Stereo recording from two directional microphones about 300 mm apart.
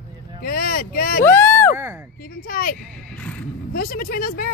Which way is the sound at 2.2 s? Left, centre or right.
Left.